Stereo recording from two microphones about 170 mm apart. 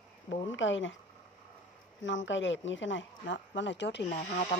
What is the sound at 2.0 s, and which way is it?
Speech, 90° left.